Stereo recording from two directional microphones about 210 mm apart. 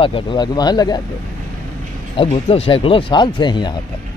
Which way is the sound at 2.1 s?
25° left (ahead or behind).